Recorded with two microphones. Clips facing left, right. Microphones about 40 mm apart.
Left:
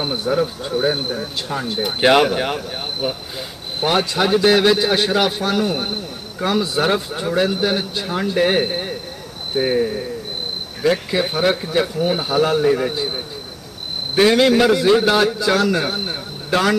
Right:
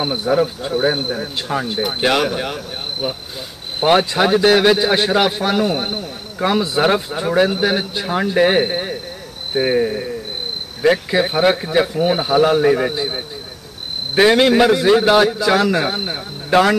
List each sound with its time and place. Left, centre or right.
0.0 s a man's voice: centre
2.0 s speech: centre
3.8 s a man's voice: centre